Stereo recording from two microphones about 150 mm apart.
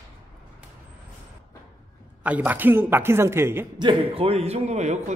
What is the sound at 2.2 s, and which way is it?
A man's voice, 10° right (ahead or behind).